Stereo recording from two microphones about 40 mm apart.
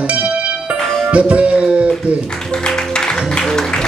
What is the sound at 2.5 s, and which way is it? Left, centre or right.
Music, centre.